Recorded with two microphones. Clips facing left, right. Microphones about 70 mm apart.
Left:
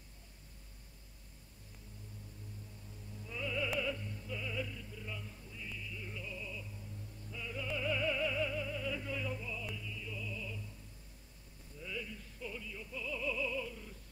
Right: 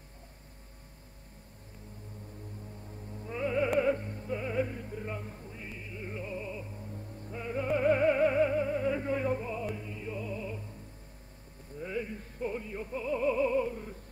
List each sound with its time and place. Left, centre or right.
3.1 s music: right
11.8 s music: right